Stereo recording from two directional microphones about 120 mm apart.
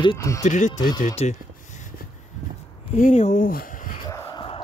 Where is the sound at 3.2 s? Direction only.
65° left (ahead or behind).